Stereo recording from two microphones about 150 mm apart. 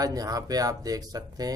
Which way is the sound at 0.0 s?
25° right (ahead or behind).